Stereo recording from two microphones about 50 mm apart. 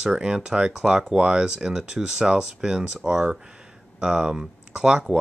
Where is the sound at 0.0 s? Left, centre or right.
Centre.